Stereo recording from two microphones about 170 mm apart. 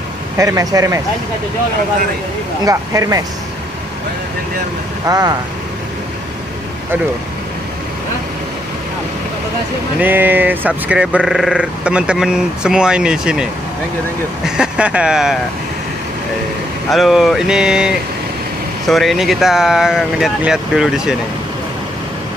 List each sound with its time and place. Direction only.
0.4 s speech: 20° right (ahead or behind)
2.6 s speech: 20° right (ahead or behind)
5.0 s speech: 20° right (ahead or behind)
9.9 s speech: 10° right (ahead or behind)
16.9 s speech: centre (ahead or behind)